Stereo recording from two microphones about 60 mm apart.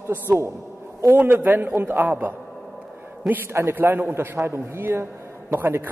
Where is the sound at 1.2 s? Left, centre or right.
Right.